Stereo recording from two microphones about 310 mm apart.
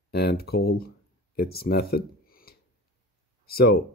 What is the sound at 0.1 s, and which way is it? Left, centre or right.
Speech, left.